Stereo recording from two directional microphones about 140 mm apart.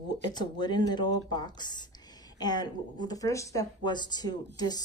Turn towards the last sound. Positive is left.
turn(degrees=30)  # may be behind; listen again after turning